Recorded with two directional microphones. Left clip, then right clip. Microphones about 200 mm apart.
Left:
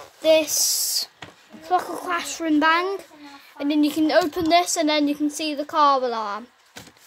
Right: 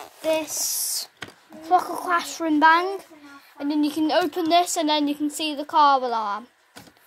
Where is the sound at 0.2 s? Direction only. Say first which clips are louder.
Left 7 dB; 25° left (ahead or behind); by 1.1 s 5° left (ahead or behind).